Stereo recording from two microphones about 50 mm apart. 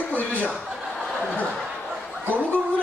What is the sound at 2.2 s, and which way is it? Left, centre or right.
Gargling, right.